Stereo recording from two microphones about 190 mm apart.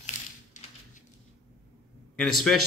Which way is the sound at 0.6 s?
40° left (ahead or behind).